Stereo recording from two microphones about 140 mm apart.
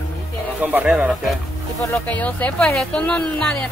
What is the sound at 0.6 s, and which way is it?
Speech, 10° right (ahead or behind).